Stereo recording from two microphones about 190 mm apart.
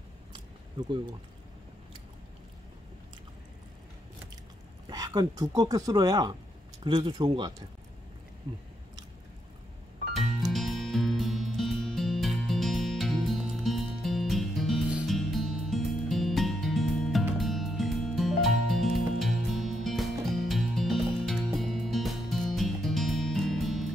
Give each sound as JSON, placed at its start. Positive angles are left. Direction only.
{"t": 4.8, "sound": "speech", "side_deg": -20}
{"t": 10.1, "sound": "music", "side_deg": 0}